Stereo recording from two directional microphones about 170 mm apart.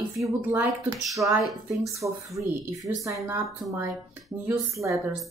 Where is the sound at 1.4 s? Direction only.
Centre (ahead or behind).